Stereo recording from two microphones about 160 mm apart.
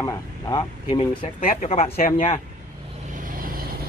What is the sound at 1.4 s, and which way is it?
Speech, 45° left (ahead or behind).